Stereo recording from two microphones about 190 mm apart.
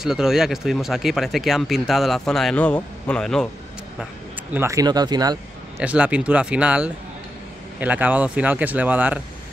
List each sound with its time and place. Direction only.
0.0 s speech: 5° right (ahead or behind)
4.6 s speech: 15° right (ahead or behind)
5.8 s speech: 5° right (ahead or behind)